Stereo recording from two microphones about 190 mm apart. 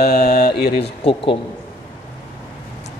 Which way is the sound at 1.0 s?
25° left (ahead or behind).